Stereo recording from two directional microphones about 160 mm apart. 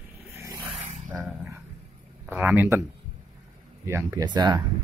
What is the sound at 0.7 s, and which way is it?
Dog, 40° right (ahead or behind).